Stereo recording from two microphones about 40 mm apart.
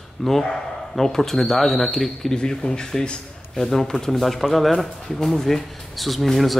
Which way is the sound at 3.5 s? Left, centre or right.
Centre.